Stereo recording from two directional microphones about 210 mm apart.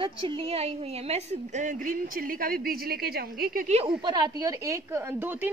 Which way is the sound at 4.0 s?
20° right (ahead or behind).